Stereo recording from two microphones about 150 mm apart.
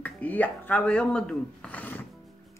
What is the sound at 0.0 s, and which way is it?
Speech, 10° left (ahead or behind).